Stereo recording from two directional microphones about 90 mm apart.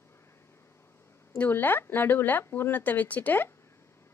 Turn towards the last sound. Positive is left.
turn(degrees=20)  # may be behind; listen again after turning